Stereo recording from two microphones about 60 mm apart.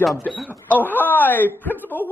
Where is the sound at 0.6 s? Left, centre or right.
Left.